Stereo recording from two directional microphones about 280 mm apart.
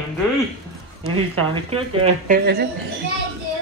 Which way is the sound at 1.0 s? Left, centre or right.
Right.